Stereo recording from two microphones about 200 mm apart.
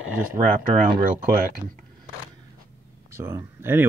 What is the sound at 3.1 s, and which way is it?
Speech, 15° right (ahead or behind).